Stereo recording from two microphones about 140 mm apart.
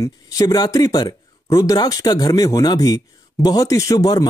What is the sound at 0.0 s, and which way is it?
Speech, 25° left (ahead or behind).